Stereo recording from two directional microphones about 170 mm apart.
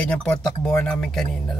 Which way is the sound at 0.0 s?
5° left (ahead or behind).